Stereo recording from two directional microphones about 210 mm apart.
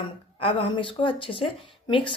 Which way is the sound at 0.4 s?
25° left (ahead or behind).